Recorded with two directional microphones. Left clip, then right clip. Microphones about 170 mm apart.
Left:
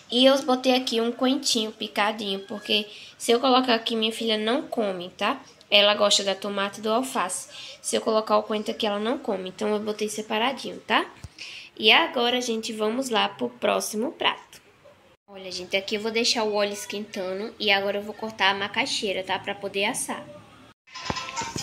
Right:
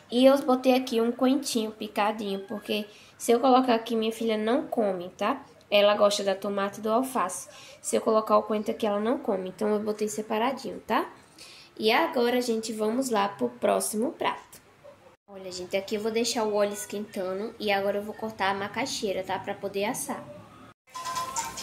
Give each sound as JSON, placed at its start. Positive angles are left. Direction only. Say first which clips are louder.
{"t": 0.1, "sound": "speech", "louder": "left 1 dB", "side_deg": -5}